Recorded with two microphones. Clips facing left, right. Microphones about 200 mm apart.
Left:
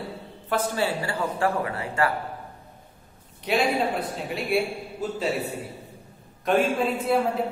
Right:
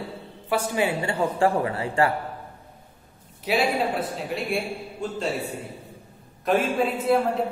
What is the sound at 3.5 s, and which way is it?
A man's voice, 5° right (ahead or behind).